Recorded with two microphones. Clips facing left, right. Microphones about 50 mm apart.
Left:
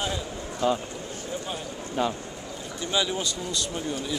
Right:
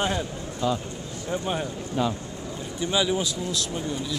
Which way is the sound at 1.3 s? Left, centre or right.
Right.